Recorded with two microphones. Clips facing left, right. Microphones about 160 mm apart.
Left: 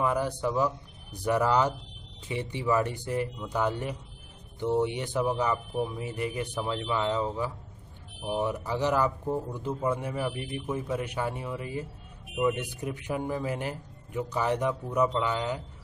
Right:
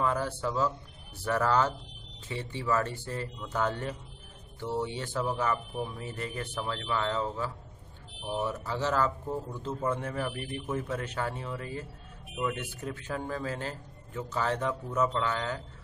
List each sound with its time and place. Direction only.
0.0 s a man's voice: 15° left (ahead or behind)